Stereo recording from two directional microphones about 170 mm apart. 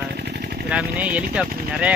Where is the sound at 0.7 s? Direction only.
5° right (ahead or behind).